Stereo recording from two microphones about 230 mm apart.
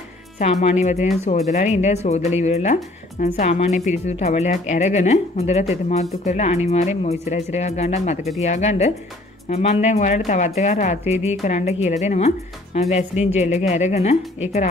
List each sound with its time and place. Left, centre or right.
0.4 s speech: left